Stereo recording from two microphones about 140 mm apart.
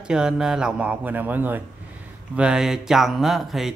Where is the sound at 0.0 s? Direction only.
5° right (ahead or behind).